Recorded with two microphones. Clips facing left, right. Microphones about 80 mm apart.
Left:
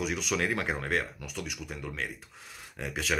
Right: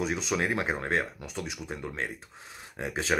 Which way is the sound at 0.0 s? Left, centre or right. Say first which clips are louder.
Right 1 dB; right.